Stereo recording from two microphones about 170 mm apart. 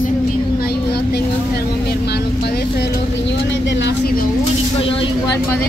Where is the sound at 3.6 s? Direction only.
90° left.